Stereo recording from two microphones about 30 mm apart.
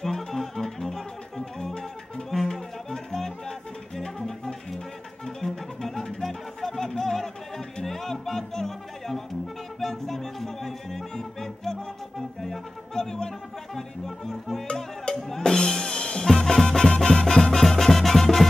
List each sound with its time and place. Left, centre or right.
0.0 s music: centre
5.2 s music: centre
15.4 s music: left